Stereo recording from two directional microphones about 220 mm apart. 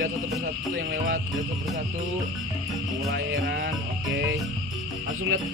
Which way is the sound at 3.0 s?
50° right (ahead or behind).